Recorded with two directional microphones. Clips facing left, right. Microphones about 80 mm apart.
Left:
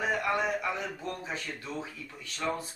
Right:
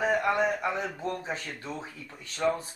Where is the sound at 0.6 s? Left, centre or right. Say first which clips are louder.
Right 3 dB; right.